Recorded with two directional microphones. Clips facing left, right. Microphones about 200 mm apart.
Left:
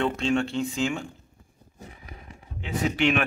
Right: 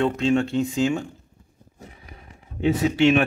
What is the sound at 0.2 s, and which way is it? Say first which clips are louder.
Speech: right 4 dB; 40° right (ahead or behind).